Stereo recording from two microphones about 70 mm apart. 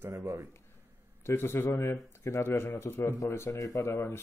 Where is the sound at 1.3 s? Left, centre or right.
Left.